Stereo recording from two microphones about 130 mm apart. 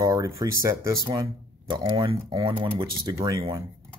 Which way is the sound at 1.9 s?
45° right (ahead or behind).